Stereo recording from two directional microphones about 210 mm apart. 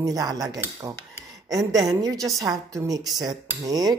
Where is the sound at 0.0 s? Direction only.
15° right (ahead or behind).